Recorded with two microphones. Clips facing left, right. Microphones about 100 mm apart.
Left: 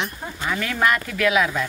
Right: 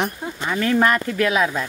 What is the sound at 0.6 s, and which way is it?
Speech, 35° right (ahead or behind).